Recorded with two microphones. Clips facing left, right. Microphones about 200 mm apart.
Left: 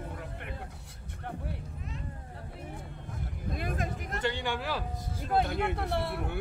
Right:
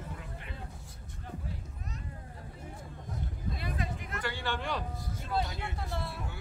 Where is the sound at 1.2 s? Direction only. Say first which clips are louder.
Left 4 dB; 65° left (ahead or behind).